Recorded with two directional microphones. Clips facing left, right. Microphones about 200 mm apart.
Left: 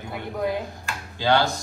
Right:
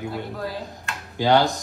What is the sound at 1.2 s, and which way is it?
Speech, 15° right (ahead or behind).